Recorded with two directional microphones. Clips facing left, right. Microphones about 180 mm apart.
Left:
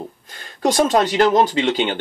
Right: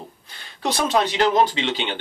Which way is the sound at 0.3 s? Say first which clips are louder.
Left 6 dB; 45° left (ahead or behind).